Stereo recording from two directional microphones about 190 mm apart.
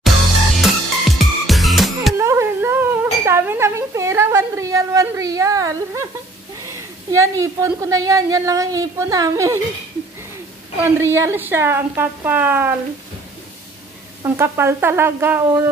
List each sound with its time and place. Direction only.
0.6 s music: centre (ahead or behind)
2.1 s a sound: 15° right (ahead or behind)
7.1 s a woman's voice: 15° right (ahead or behind)
10.8 s a woman's voice: 10° right (ahead or behind)
14.2 s a woman's voice: 15° right (ahead or behind)